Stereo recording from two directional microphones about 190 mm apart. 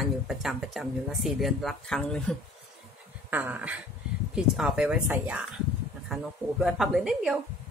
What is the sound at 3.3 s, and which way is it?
A woman's voice, 10° right (ahead or behind).